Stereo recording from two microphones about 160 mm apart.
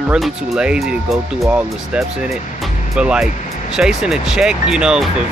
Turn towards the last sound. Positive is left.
turn(degrees=-5)  # may be behind; listen again after turning